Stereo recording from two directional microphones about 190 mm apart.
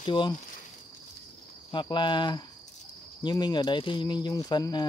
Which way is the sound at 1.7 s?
25° left (ahead or behind).